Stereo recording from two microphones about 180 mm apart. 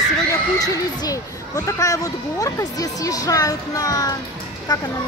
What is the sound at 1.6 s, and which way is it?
Speech, 20° left (ahead or behind).